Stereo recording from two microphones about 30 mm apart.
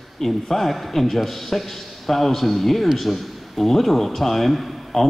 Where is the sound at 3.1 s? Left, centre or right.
Centre.